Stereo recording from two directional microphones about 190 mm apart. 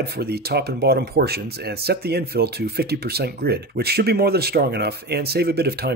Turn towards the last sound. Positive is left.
turn(degrees=-55)  # may be behind; listen again after turning